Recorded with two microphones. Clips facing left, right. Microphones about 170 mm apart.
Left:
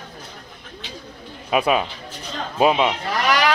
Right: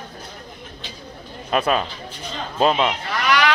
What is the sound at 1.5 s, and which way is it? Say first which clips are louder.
Speech: left 1 dB; 10° left (ahead or behind).